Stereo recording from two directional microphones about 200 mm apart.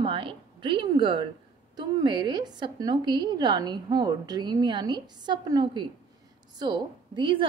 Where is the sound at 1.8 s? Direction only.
20° right (ahead or behind).